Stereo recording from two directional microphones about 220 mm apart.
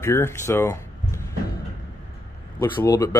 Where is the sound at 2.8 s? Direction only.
15° left (ahead or behind).